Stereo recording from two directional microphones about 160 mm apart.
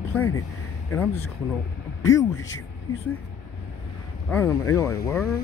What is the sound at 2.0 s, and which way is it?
Speech, 20° left (ahead or behind).